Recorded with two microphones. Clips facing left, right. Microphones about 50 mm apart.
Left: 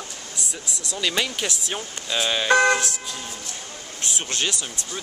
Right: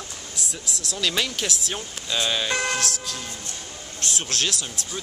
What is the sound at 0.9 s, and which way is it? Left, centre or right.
Speech, centre.